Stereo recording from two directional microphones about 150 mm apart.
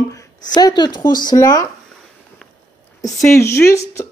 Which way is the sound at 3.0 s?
20° left (ahead or behind).